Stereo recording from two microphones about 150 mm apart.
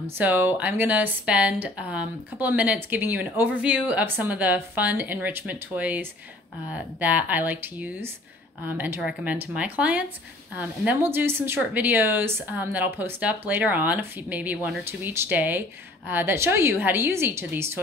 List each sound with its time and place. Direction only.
0.0 s speech: 15° right (ahead or behind)